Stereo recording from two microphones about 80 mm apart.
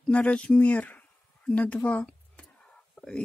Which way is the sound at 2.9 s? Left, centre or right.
Centre.